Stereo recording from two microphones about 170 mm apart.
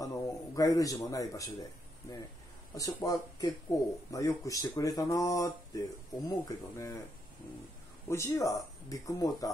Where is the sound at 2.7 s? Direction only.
20° left (ahead or behind).